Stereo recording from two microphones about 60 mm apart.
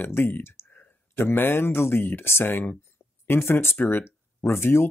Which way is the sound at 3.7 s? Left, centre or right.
Left.